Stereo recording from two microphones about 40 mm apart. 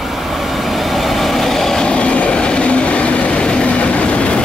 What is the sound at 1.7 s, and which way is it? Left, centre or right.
Train, left.